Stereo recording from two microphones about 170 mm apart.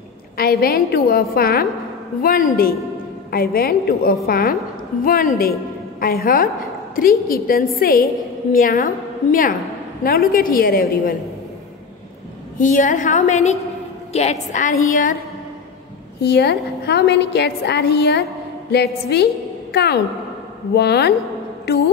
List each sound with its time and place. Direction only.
0.4 s a woman's voice: 65° left (ahead or behind)
12.5 s a woman's voice: 50° left (ahead or behind)
16.2 s a woman's voice: 70° left (ahead or behind)
21.6 s music: 90° left